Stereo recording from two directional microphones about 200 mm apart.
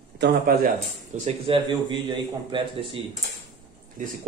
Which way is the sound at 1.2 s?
25° right (ahead or behind).